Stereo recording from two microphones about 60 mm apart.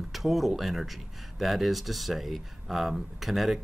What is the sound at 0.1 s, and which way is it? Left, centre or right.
Speech, centre.